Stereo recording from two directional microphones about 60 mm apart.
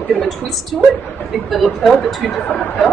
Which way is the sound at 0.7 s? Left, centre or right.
Centre.